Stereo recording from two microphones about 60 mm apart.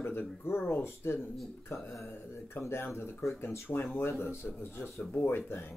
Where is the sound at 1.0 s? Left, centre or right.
Left.